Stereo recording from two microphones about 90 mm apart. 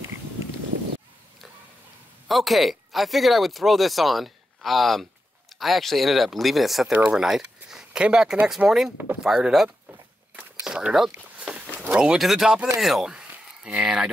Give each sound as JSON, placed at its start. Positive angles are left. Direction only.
{"t": 2.2, "sound": "speech", "side_deg": 0}
{"t": 6.9, "sound": "speech", "side_deg": -10}
{"t": 8.9, "sound": "speech", "side_deg": -20}
{"t": 9.2, "sound": "speech", "side_deg": -10}
{"t": 11.3, "sound": "a sound", "side_deg": -15}
{"t": 12.0, "sound": "speech", "side_deg": -5}